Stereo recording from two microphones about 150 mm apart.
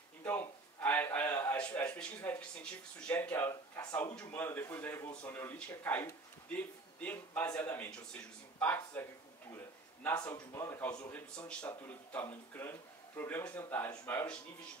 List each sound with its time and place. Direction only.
0.2 s speech: 15° left (ahead or behind)
10.3 s a man's voice: 20° left (ahead or behind)